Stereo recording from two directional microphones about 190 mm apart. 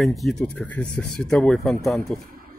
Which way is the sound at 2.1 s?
50° right (ahead or behind).